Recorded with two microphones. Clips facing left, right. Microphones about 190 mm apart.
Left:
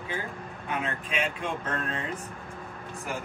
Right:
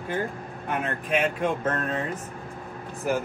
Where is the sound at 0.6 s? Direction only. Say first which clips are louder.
Right 4 dB; 55° right (ahead or behind).